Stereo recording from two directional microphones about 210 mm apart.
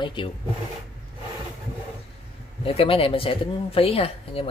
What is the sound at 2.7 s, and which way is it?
Speech, 25° left (ahead or behind).